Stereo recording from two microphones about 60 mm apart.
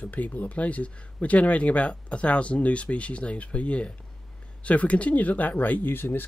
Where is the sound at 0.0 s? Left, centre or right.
Left.